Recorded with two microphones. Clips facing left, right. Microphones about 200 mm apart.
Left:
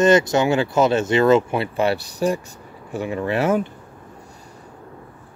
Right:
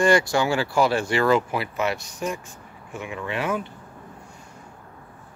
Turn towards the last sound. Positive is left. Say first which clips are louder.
# left 7 dB
turn(degrees=40)  # may be behind; listen again after turning